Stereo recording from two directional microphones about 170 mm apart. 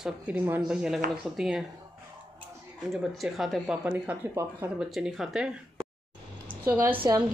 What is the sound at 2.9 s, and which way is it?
Speech, centre (ahead or behind).